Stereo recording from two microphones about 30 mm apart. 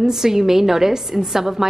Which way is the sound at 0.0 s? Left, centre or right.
Centre.